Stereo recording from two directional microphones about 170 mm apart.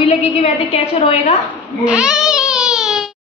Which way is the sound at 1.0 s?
35° left (ahead or behind).